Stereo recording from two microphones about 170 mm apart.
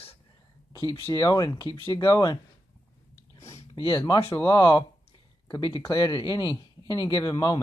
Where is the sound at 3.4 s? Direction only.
15° left (ahead or behind).